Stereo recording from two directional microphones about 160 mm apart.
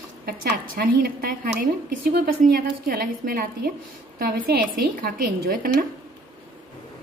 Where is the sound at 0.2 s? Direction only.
75° right (ahead or behind).